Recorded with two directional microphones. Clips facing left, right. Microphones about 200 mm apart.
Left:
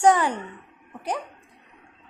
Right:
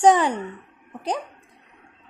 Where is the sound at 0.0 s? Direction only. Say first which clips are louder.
Right 2 dB; 20° right (ahead or behind).